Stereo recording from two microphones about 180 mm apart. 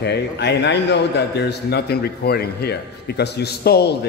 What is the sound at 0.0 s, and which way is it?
A man's voice, 70° left (ahead or behind).